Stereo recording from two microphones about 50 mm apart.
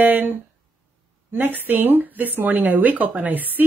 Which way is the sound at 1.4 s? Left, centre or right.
Right.